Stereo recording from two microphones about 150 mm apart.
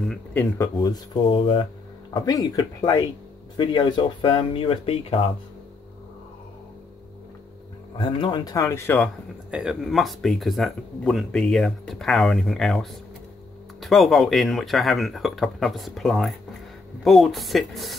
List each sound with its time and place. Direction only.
0.1 s speech: 10° left (ahead or behind)
1.3 s speech: 35° left (ahead or behind)
8.0 s speech: 30° left (ahead or behind); by 9.1 s 10° left (ahead or behind)
9.5 s speech: 5° right (ahead or behind)